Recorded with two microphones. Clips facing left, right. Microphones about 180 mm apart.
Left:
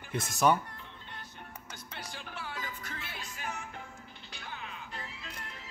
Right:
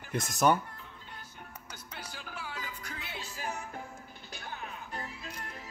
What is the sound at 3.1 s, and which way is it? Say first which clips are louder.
Music: right 3 dB; 35° right (ahead or behind).